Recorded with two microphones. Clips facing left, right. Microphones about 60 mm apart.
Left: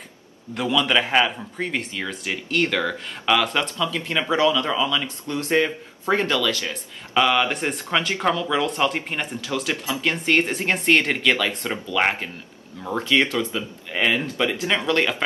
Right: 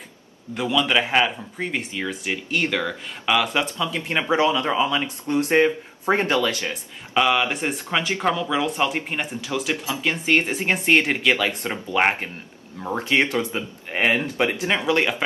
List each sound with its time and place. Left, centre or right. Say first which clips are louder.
0.6 s speech: even; centre
3.7 s speech: even; centre
6.7 s speech: even; centre
11.9 s speech: right 2 dB; right
14.7 s speech: left 1 dB; centre